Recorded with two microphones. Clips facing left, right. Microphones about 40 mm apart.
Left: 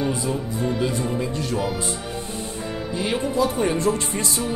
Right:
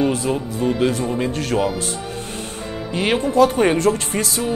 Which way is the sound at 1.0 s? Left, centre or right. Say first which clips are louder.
Right 4 dB; right.